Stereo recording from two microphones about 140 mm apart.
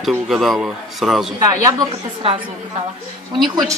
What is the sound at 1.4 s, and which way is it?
Speech, 25° right (ahead or behind).